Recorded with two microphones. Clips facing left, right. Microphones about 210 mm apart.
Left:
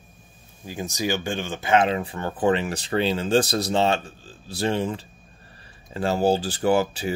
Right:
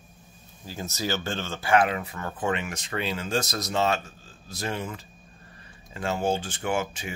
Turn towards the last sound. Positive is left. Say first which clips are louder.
# left 7 dB
turn(degrees=35)  # may be behind; listen again after turning